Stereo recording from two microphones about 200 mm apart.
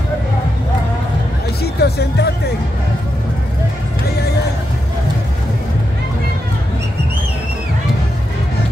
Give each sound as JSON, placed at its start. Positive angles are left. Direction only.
{"t": 1.6, "sound": "speech", "side_deg": 55}